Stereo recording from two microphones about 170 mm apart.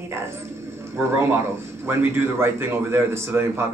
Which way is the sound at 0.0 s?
15° right (ahead or behind).